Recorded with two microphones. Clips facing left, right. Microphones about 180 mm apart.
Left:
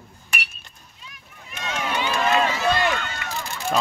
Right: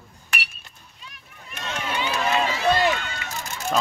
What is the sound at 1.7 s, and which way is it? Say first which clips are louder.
Run: left 2 dB; 45° left (ahead or behind).